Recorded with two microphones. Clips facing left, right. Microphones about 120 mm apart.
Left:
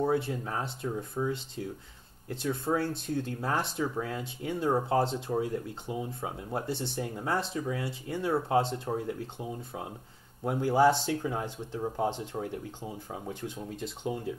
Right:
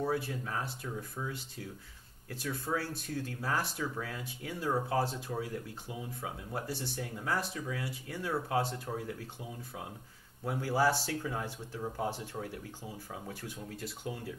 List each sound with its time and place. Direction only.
0.0 s speech: 25° left (ahead or behind)